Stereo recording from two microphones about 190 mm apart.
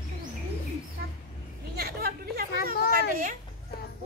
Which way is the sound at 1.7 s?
55° right (ahead or behind).